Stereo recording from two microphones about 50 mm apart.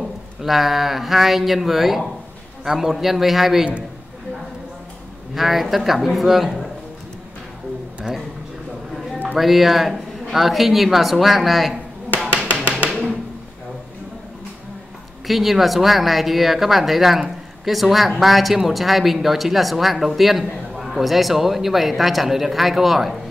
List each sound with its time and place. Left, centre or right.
0.4 s speech: centre
5.3 s speech: centre
8.1 s a sound: centre
9.4 s speech: centre
12.9 s a sound: centre
15.2 s speech: centre